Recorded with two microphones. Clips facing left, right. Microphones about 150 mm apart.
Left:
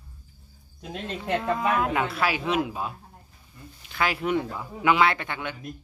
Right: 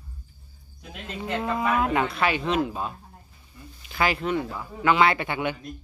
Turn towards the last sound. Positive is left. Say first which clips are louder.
# right 4 dB
turn(degrees=-10)  # may be behind; listen again after turning